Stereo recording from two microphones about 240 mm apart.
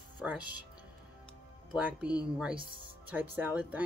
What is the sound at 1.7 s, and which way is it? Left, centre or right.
Speech, centre.